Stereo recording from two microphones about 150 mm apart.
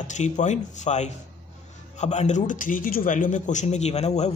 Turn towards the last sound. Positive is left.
turn(degrees=50)  # may be behind; listen again after turning